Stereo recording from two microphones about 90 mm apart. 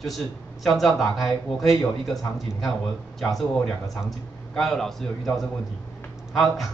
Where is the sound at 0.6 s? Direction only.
Centre (ahead or behind).